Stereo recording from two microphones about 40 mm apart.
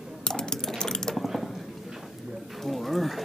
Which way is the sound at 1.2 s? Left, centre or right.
Centre.